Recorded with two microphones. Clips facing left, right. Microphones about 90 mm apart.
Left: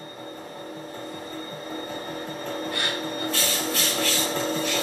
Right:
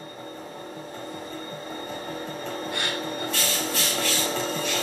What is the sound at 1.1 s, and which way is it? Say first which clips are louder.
Music: even; 20° right (ahead or behind).